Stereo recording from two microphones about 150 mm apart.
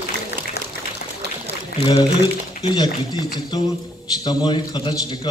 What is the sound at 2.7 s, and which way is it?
A man's voice, 30° left (ahead or behind).